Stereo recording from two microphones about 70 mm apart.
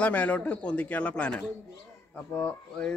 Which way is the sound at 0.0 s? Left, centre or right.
Centre.